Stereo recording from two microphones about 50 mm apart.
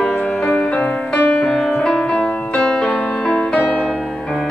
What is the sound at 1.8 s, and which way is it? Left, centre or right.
Music, centre.